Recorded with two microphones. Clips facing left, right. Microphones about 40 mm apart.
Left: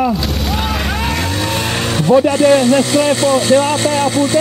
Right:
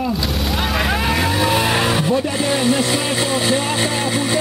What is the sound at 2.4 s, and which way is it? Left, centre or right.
Speech, centre.